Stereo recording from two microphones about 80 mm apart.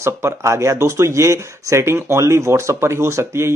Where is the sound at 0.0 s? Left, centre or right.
Right.